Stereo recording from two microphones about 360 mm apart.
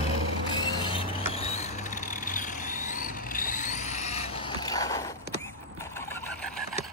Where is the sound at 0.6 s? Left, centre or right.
Centre.